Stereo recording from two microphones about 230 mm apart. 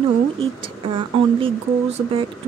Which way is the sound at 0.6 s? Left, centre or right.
Right.